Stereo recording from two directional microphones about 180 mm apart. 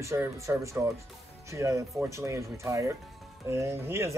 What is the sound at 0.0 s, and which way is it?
Speech, 15° right (ahead or behind).